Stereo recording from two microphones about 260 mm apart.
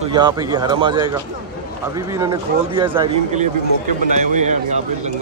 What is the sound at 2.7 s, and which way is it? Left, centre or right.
Speech, right.